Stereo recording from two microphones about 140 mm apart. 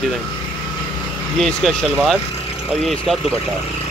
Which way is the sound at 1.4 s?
Centre (ahead or behind).